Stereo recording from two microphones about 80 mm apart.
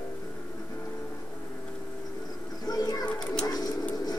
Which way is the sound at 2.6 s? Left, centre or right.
Left.